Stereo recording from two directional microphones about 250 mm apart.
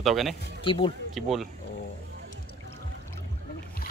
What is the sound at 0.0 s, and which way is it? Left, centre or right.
Speech, centre.